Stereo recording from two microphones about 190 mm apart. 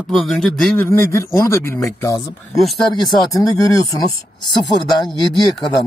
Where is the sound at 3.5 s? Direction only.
20° left (ahead or behind).